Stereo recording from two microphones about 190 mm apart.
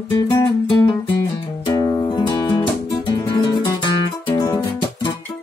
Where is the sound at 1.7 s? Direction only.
20° left (ahead or behind).